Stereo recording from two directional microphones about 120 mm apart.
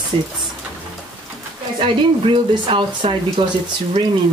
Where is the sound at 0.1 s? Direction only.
50° right (ahead or behind).